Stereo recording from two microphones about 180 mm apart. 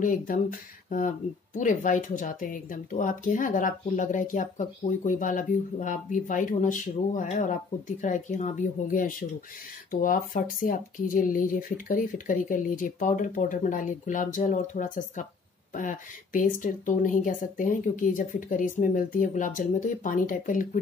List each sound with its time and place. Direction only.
0.0 s speech: 50° left (ahead or behind)